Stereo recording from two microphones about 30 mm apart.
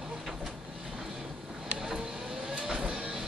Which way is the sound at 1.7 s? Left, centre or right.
Centre.